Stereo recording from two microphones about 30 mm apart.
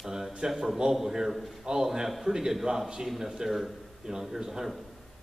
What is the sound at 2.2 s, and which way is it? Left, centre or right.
Speech, centre.